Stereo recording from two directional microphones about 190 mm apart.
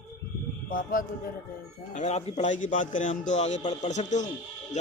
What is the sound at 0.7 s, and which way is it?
Speech, 45° left (ahead or behind).